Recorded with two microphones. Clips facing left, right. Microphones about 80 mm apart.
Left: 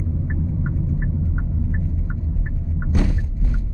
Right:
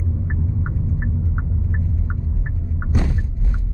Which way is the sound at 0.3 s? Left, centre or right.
Centre.